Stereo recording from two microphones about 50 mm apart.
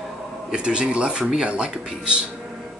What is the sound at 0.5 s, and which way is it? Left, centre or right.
Speech, right.